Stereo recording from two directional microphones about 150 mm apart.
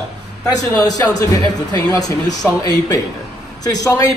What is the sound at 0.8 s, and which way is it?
A man's voice, 25° left (ahead or behind).